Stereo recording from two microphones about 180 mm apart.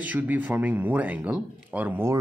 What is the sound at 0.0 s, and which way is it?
Speech, 10° right (ahead or behind).